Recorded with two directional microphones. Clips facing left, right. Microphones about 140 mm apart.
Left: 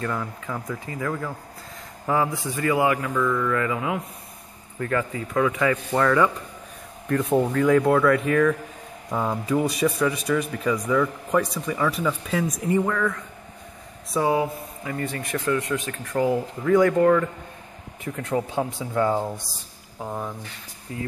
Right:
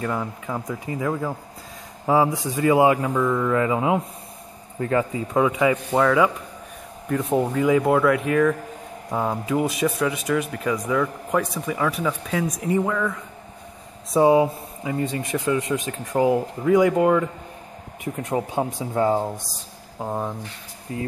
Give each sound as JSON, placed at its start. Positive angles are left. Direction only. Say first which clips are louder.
{"t": 0.0, "sound": "a man's voice", "louder": "right 2 dB", "side_deg": -15}
{"t": 14.1, "sound": "a man's voice", "louder": "right 6 dB", "side_deg": -25}